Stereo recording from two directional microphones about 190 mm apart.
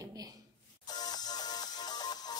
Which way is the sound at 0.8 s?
20° left (ahead or behind).